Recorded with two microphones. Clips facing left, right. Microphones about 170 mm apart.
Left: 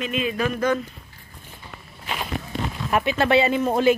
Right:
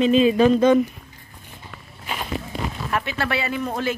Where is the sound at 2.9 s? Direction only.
20° left (ahead or behind).